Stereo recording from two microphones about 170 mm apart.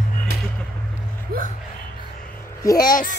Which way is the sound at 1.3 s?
60° right (ahead or behind).